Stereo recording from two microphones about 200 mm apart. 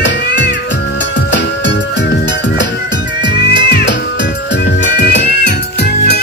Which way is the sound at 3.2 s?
60° left (ahead or behind).